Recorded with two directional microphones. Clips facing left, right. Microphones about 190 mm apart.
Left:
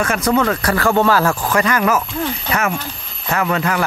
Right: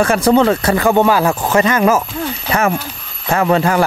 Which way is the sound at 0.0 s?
30° right (ahead or behind).